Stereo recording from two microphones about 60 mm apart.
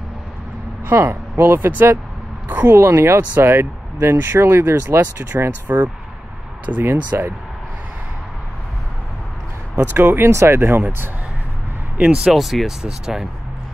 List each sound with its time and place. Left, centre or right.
0.9 s speech: right
9.9 s speech: right
10.3 s speech: right
12.0 s speech: centre